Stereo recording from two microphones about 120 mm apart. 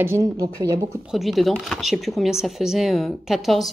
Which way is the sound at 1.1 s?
Centre (ahead or behind).